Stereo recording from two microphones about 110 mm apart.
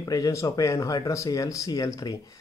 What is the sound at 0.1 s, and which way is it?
Speech, 30° left (ahead or behind).